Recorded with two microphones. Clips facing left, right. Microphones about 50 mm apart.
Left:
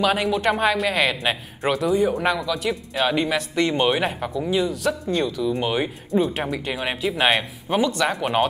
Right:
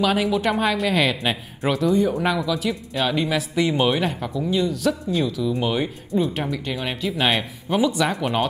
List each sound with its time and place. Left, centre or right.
0.0 s speech: centre